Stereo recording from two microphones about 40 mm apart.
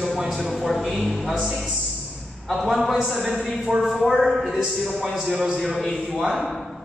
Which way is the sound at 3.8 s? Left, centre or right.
Centre.